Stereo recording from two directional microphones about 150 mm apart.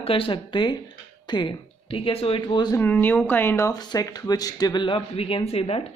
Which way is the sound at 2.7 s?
15° left (ahead or behind).